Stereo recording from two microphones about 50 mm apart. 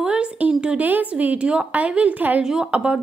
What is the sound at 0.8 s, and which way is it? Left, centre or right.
A woman's voice, right.